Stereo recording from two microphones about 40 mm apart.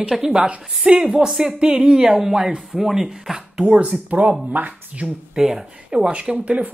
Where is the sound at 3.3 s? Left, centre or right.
Right.